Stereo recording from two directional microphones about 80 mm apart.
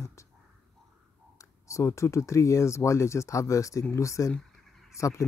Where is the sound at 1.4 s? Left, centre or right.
Left.